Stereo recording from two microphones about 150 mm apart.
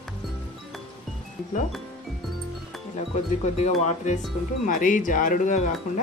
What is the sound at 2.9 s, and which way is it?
Speech, 50° left (ahead or behind).